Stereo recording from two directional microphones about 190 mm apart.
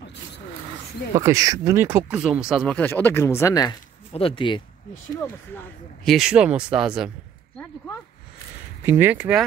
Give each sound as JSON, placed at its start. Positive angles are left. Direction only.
{"t": 1.1, "sound": "speech", "side_deg": -15}
{"t": 4.1, "sound": "speech", "side_deg": 30}
{"t": 6.0, "sound": "speech", "side_deg": 0}
{"t": 8.8, "sound": "speech", "side_deg": -10}